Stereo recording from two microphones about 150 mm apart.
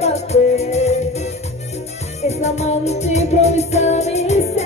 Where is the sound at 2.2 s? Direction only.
45° left (ahead or behind).